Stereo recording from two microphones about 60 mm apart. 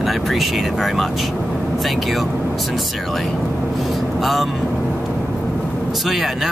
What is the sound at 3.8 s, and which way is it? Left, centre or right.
Vehicle, centre.